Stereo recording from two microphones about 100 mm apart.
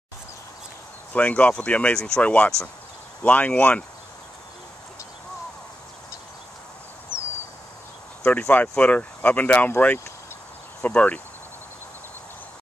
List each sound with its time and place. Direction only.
1.1 s speech: 15° left (ahead or behind)
8.2 s speech: 10° left (ahead or behind)